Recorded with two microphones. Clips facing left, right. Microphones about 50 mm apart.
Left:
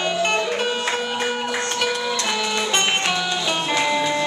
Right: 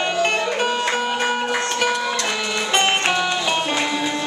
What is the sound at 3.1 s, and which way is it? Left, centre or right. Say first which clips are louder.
Music: right 3 dB; right.